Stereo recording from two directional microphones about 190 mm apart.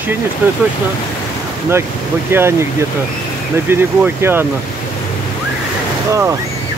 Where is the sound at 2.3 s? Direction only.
15° right (ahead or behind).